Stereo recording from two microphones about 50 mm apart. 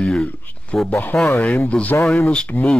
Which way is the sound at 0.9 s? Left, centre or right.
Left.